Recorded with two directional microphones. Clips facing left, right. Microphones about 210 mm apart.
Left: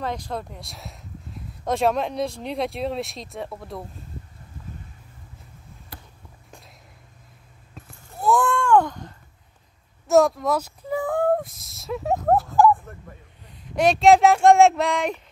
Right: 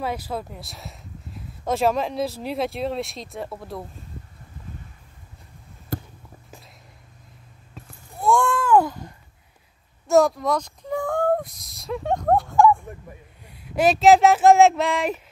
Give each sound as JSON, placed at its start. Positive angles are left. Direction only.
{"t": 0.0, "sound": "speech", "side_deg": -5}
{"t": 5.9, "sound": "basketball bounce", "side_deg": -45}
{"t": 7.7, "sound": "a sound", "side_deg": 0}
{"t": 13.7, "sound": "speech", "side_deg": -5}